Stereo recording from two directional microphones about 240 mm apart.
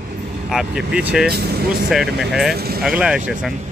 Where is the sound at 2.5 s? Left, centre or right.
Right.